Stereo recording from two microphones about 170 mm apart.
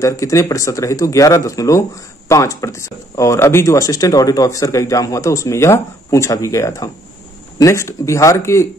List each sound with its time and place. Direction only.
0.0 s speech: 20° left (ahead or behind)